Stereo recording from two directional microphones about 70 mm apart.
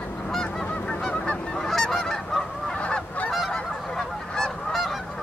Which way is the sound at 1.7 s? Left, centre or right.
Centre.